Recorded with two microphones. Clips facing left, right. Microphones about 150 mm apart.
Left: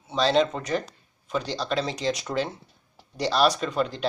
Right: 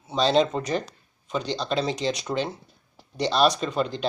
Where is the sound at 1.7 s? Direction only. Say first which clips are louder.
Right 1 dB; 30° right (ahead or behind).